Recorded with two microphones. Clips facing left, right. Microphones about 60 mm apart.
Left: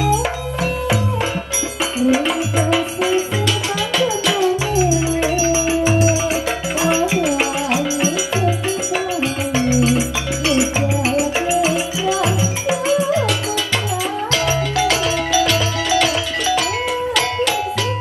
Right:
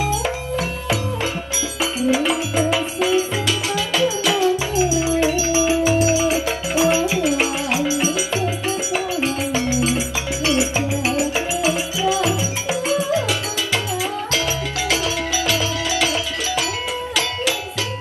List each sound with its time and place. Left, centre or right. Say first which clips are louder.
0.1 s music: left 3 dB; left
2.0 s music: left 3 dB; left
4.3 s music: left 1 dB; left
9.2 s music: left 2 dB; left